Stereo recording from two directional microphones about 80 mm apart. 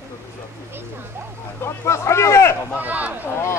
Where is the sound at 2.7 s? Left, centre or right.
Centre.